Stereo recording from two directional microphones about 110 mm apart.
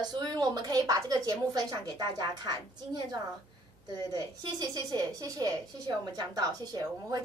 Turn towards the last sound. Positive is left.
turn(degrees=-35)  # may be behind; listen again after turning